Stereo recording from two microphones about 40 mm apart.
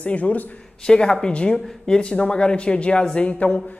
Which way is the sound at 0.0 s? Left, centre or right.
Left.